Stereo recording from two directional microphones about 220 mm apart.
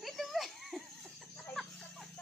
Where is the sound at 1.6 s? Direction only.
Centre (ahead or behind).